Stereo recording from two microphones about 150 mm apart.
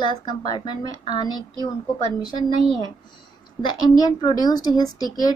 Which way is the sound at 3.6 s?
30° left (ahead or behind).